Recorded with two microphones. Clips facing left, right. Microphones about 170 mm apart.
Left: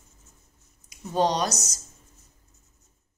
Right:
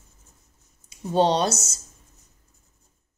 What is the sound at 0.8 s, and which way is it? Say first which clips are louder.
Speech: right 4 dB; 30° right (ahead or behind).